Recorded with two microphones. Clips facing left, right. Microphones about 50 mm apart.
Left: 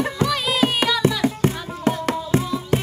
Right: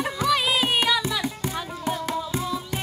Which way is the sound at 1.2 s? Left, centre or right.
Left.